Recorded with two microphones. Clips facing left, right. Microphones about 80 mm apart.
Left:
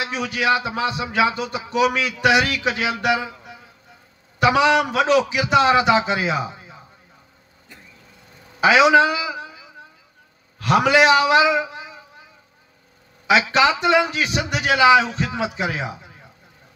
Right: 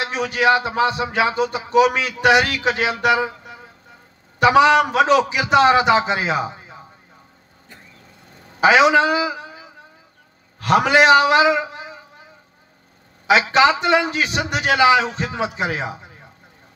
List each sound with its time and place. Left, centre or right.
0.0 s a man's voice: right
8.6 s a man's voice: right
13.3 s a man's voice: right